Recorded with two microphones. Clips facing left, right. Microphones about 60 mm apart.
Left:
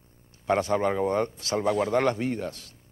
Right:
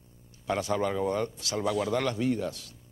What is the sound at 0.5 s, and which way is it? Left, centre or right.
Speech, left.